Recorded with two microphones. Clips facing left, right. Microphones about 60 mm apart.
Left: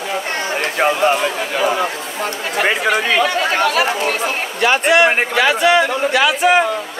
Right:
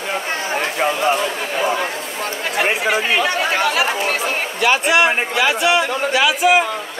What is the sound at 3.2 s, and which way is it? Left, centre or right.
Speech, centre.